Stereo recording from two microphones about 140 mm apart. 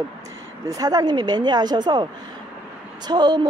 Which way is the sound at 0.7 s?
25° right (ahead or behind).